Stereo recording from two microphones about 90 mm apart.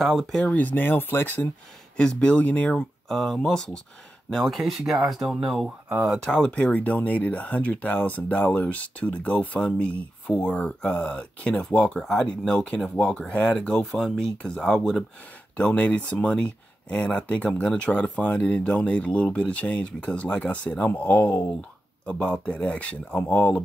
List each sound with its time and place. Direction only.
0.0 s speech: 5° left (ahead or behind)
0.5 s speech: 20° left (ahead or behind)
3.1 s speech: 5° left (ahead or behind)
6.1 s speech: 10° left (ahead or behind)